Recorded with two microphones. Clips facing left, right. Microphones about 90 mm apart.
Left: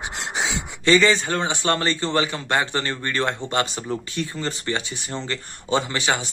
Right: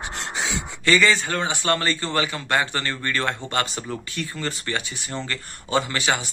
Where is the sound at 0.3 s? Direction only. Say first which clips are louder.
Left 2 dB; 20° left (ahead or behind).